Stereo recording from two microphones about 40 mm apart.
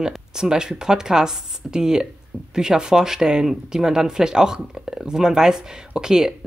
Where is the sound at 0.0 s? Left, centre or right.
Centre.